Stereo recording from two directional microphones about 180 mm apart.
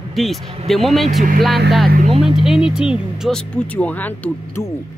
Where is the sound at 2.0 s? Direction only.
35° right (ahead or behind).